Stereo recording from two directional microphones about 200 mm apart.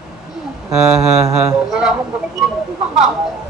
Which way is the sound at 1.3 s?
5° right (ahead or behind).